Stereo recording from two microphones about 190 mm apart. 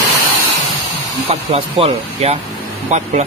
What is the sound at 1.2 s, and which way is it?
A man's voice, 30° right (ahead or behind).